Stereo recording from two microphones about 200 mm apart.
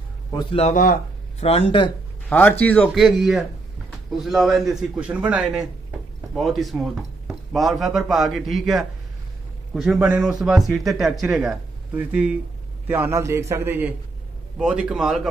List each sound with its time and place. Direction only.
0.3 s a man's voice: 20° left (ahead or behind)
0.6 s speech: 40° left (ahead or behind)
2.2 s a man's voice: 10° left (ahead or behind)